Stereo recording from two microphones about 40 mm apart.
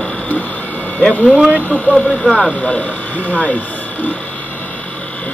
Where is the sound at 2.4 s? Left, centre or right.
Left.